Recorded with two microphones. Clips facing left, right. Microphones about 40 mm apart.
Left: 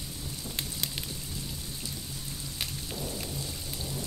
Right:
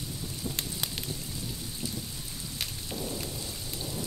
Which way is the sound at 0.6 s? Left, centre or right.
Centre.